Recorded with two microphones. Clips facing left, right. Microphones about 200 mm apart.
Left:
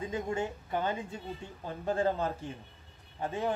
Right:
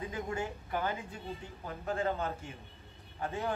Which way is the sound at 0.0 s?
25° left (ahead or behind).